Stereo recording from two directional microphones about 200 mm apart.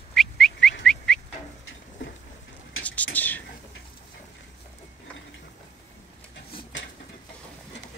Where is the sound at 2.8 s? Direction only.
5° left (ahead or behind).